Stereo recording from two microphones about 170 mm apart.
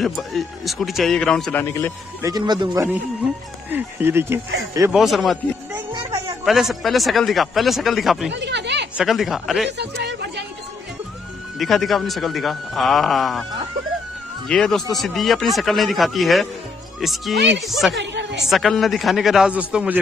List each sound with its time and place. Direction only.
0.0 s a man's voice: centre (ahead or behind)
2.2 s speech: 25° right (ahead or behind)
4.9 s a man's voice: centre (ahead or behind)
6.4 s a man's voice: centre (ahead or behind)
8.3 s speech: 90° right
8.9 s a man's voice: centre (ahead or behind)
9.7 s a sound: 85° right
11.5 s a man's voice: centre (ahead or behind)
14.5 s a man's voice: centre (ahead or behind)
17.9 s a sound: 90° right
18.5 s a man's voice: centre (ahead or behind)